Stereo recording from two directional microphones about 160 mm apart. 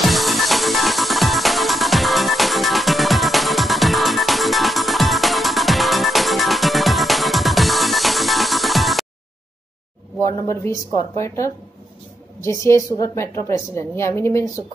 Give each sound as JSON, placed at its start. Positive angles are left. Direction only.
{"t": 0.0, "sound": "music", "side_deg": 0}
{"t": 10.2, "sound": "a woman's voice", "side_deg": 20}